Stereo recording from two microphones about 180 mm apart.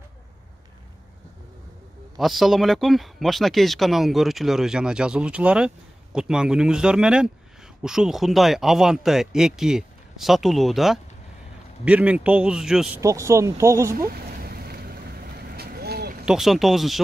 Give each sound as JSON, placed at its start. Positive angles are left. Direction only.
{"t": 2.1, "sound": "a man's voice", "side_deg": 0}
{"t": 13.0, "sound": "a man's voice", "side_deg": -15}
{"t": 13.9, "sound": "boat", "side_deg": -55}
{"t": 16.3, "sound": "a man's voice", "side_deg": 0}